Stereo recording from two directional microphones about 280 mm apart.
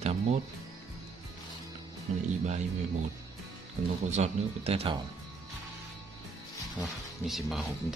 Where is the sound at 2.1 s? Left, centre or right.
Right.